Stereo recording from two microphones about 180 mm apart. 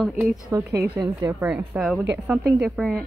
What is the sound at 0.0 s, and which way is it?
Speech, 5° right (ahead or behind).